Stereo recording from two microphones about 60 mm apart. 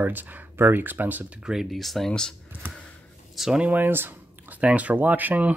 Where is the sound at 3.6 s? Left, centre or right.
Right.